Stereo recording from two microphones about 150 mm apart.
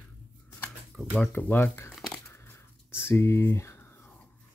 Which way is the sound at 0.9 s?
5° left (ahead or behind).